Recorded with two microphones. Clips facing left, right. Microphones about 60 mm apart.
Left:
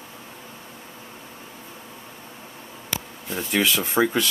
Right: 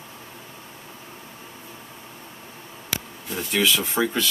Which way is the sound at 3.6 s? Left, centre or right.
Left.